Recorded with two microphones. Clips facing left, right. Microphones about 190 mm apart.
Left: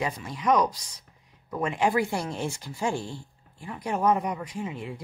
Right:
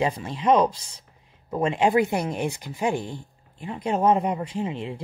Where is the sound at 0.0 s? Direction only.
25° right (ahead or behind).